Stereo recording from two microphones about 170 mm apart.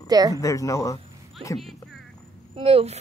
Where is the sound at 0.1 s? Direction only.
25° right (ahead or behind).